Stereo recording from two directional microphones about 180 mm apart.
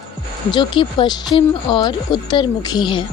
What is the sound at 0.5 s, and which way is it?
Speech, 25° left (ahead or behind).